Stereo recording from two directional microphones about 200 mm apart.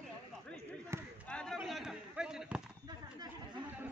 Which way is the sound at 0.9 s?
15° right (ahead or behind).